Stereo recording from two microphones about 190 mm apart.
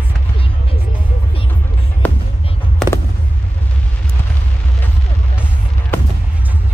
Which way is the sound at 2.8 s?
Centre (ahead or behind).